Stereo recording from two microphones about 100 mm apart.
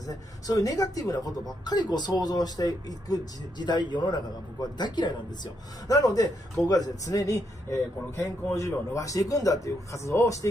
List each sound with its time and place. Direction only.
0.0 s a man's voice: 35° left (ahead or behind)